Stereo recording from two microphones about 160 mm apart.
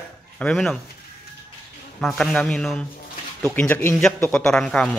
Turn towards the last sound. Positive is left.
turn(degrees=5)  # may be behind; listen again after turning